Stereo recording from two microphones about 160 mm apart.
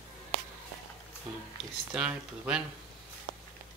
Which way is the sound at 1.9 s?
5° right (ahead or behind).